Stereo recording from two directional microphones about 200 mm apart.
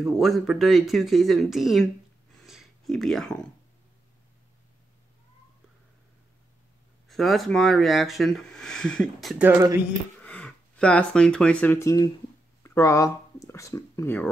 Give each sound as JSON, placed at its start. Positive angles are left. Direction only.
{"t": 0.0, "sound": "speech", "side_deg": 0}
{"t": 2.3, "sound": "a sound", "side_deg": 0}
{"t": 7.1, "sound": "speech", "side_deg": 0}
{"t": 10.2, "sound": "speech", "side_deg": 5}